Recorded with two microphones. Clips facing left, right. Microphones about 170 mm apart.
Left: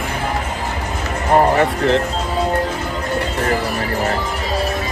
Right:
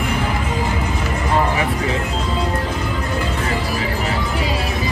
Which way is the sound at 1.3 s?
55° left (ahead or behind).